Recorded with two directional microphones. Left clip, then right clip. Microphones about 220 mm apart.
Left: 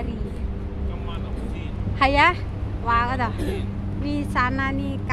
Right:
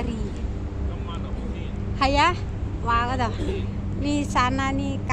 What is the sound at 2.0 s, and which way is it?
Speech, centre (ahead or behind).